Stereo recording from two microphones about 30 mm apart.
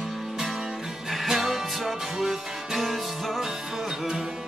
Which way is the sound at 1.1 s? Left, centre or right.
Centre.